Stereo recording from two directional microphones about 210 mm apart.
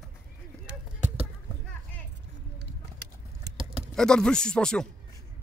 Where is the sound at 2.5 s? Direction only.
55° right (ahead or behind).